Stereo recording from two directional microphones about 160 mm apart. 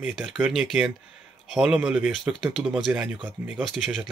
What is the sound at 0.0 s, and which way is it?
Speech, 5° right (ahead or behind).